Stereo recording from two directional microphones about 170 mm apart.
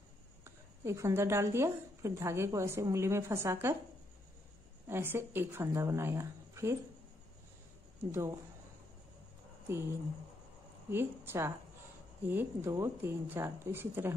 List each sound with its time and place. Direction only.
0.4 s a woman's voice: 15° right (ahead or behind)
4.8 s a woman's voice: 15° right (ahead or behind)
8.0 s speech: 15° right (ahead or behind)
9.7 s a woman's voice: 15° right (ahead or behind)
10.9 s a woman's voice: 15° right (ahead or behind)